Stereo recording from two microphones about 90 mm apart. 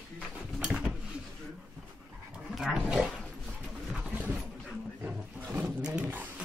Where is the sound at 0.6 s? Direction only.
5° right (ahead or behind).